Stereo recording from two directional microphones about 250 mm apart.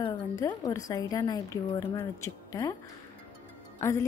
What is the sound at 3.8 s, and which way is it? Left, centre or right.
Speech, centre.